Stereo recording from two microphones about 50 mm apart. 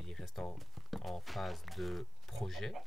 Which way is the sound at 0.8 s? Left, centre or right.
Centre.